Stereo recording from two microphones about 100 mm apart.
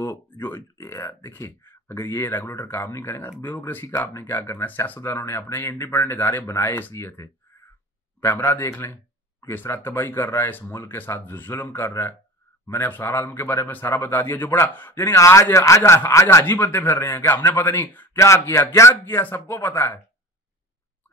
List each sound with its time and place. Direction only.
0.0 s speech: 20° left (ahead or behind)
18.2 s speech: 30° left (ahead or behind)